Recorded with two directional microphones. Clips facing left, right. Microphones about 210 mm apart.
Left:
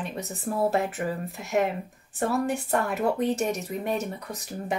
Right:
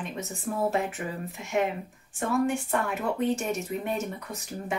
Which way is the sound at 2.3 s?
35° left (ahead or behind).